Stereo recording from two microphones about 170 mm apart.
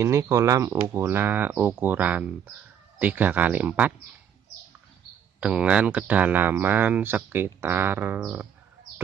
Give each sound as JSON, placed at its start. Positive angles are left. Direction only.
{"t": 0.0, "sound": "speech", "side_deg": -15}
{"t": 5.4, "sound": "speech", "side_deg": -5}